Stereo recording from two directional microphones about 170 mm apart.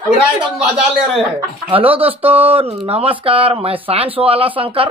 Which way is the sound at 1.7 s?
35° right (ahead or behind).